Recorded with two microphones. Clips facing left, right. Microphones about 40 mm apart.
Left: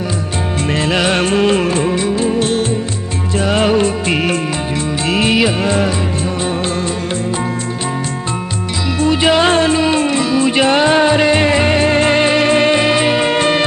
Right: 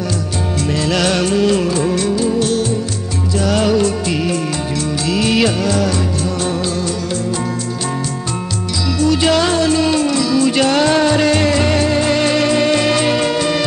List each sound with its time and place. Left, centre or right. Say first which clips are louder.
0.7 s music: left 2 dB; left
1.9 s music: left 1 dB; left
9.0 s music: left 2 dB; left
13.3 s music: left 3 dB; left